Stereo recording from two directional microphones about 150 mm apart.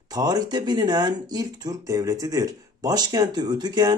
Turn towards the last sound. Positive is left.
turn(degrees=-30)  # may be behind; listen again after turning